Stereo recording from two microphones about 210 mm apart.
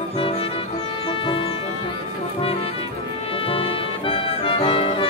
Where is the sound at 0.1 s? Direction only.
30° left (ahead or behind).